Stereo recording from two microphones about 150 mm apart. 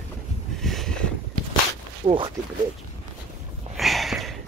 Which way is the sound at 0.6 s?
Centre (ahead or behind).